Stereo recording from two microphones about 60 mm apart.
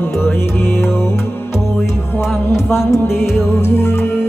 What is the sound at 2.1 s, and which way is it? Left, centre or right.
Music, left.